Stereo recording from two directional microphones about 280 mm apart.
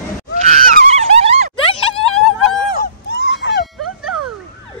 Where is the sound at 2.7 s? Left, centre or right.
Left.